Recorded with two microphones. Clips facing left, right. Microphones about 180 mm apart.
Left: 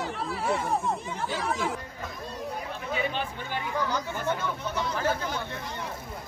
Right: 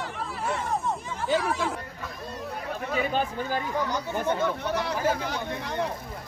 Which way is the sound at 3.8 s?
15° right (ahead or behind).